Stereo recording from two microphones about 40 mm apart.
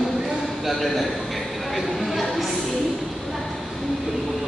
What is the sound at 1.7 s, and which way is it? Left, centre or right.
Chatter, centre.